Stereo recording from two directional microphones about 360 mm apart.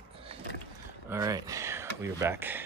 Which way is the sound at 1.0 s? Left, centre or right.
Centre.